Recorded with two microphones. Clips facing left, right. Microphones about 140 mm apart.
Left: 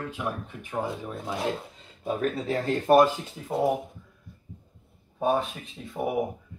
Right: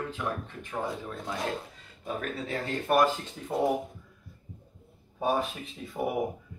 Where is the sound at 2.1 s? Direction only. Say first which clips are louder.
Left 6 dB; 35° left (ahead or behind).